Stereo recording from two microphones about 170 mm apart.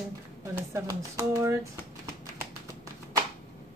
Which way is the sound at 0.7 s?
20° right (ahead or behind).